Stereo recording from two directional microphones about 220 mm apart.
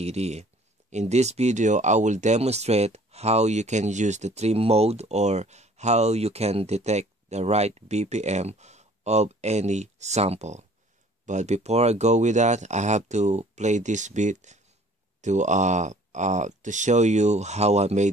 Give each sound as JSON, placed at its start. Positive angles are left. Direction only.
{"t": 0.0, "sound": "speech", "side_deg": -30}